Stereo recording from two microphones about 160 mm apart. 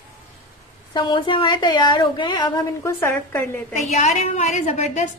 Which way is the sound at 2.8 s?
15° left (ahead or behind).